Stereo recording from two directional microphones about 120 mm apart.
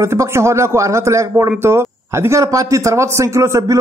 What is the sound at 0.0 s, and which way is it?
A man's voice, 25° right (ahead or behind).